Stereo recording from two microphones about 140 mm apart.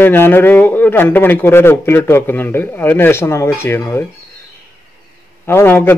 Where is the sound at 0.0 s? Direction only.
15° left (ahead or behind).